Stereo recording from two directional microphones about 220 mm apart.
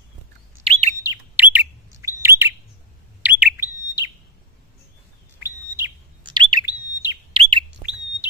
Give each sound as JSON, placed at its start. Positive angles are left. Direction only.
{"t": 0.7, "sound": "chirp", "side_deg": -25}
{"t": 1.0, "sound": "bird", "side_deg": -10}
{"t": 5.4, "sound": "chirp", "side_deg": -15}